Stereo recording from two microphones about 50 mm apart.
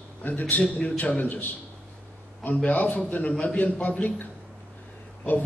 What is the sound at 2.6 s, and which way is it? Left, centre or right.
A man's voice, left.